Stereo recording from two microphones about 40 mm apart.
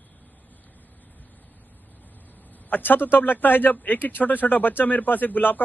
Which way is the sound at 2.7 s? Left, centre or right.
Left.